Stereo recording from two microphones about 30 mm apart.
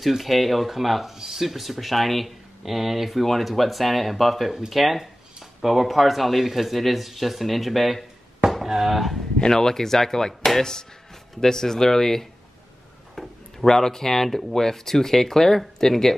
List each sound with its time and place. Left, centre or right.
0.2 s speech: centre
9.5 s speech: centre
13.1 s a sound: centre
13.7 s speech: centre